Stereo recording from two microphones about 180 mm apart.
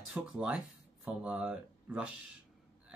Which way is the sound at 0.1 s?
5° right (ahead or behind).